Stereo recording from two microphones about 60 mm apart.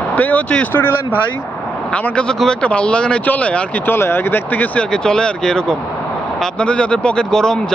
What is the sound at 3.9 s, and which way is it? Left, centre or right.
Speech, left.